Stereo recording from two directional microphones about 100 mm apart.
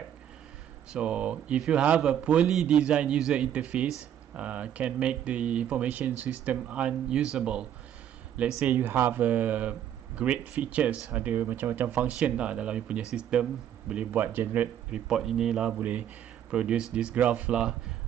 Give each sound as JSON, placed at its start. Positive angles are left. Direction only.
{"t": 0.9, "sound": "speech", "side_deg": -10}
{"t": 14.9, "sound": "a man's voice", "side_deg": -5}